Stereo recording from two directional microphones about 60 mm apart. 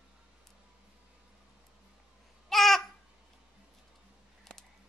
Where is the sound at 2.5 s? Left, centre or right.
Centre.